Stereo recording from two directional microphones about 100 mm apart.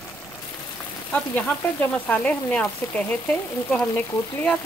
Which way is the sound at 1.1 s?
15° left (ahead or behind).